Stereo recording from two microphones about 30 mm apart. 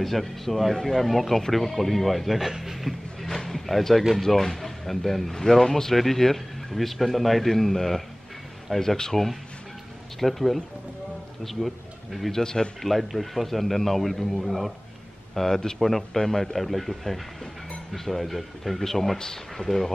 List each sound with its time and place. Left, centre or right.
0.0 s speech: centre
3.3 s a sound: centre
4.1 s speech: centre
5.3 s a man's voice: centre
9.1 s a man's voice: centre
12.4 s speech: left
13.1 s speech: centre
15.3 s a man's voice: centre
16.5 s a man's voice: centre; by 19.6 s left
19.6 s a man's voice: centre